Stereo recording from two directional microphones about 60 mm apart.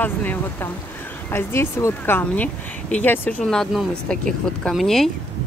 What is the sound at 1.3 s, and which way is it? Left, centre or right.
Speech, left.